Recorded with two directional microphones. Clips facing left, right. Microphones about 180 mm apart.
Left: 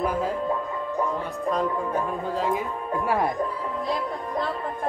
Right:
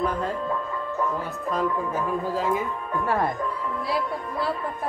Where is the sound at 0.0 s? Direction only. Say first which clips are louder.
Left 1 dB; 10° left (ahead or behind).